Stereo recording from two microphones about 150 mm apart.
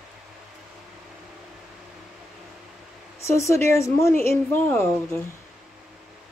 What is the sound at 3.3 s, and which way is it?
Speech, 20° left (ahead or behind).